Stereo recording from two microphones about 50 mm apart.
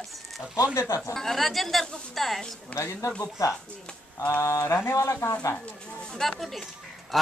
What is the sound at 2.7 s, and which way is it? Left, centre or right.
Speech, left.